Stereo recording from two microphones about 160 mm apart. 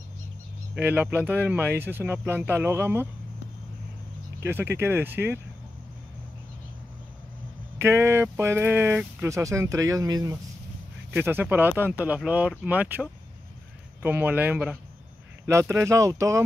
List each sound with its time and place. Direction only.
0.7 s speech: 10° right (ahead or behind)
4.5 s speech: 15° right (ahead or behind)
7.8 s speech: 15° right (ahead or behind)
11.1 s speech: 10° right (ahead or behind)